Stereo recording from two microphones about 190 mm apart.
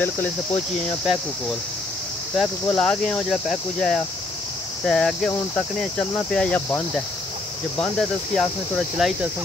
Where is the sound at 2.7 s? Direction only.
5° left (ahead or behind).